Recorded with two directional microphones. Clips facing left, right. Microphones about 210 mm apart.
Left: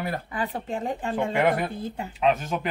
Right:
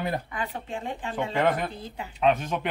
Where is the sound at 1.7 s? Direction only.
50° left (ahead or behind).